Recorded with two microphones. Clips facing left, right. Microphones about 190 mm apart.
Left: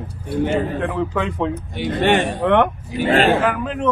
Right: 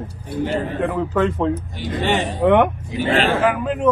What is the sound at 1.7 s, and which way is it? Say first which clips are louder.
Speech: left 4 dB; 60° left (ahead or behind).